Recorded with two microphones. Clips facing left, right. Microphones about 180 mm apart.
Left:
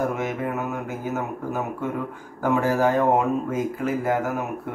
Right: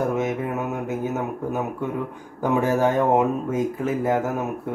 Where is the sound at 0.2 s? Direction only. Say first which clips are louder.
Right 2 dB; 20° right (ahead or behind).